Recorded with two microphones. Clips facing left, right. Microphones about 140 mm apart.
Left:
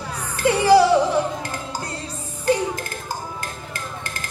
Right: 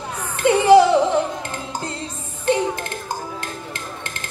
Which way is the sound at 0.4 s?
25° right (ahead or behind).